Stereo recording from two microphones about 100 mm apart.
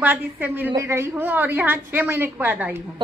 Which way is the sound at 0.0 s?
20° right (ahead or behind).